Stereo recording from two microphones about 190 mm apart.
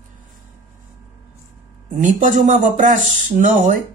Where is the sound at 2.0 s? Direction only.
40° right (ahead or behind).